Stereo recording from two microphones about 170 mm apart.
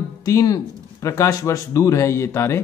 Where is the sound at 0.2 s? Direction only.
20° left (ahead or behind).